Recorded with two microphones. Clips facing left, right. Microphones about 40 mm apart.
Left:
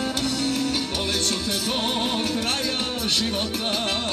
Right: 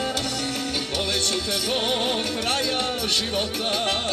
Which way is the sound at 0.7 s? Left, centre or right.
Right.